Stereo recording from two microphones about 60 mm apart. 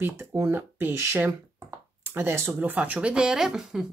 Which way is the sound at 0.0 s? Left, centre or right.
Right.